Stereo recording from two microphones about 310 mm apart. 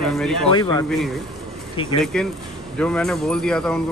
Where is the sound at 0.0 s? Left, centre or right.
Centre.